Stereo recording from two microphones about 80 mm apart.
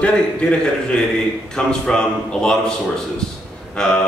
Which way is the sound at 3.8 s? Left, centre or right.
Centre.